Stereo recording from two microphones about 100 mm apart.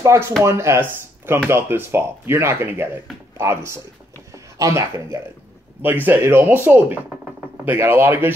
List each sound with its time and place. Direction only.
0.0 s speech: 30° right (ahead or behind)
5.8 s speech: 20° right (ahead or behind)